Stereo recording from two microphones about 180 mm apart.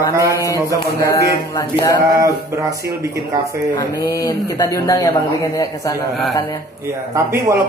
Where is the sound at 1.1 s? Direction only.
20° left (ahead or behind).